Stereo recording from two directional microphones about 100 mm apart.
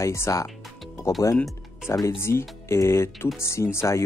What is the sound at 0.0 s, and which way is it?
Speech, 30° left (ahead or behind).